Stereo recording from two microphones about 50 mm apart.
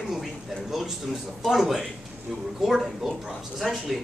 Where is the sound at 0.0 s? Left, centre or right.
Centre.